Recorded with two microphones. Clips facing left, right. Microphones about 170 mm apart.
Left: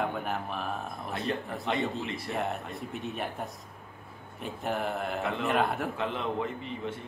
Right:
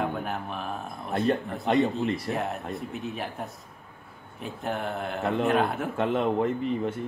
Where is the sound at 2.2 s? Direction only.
Centre (ahead or behind).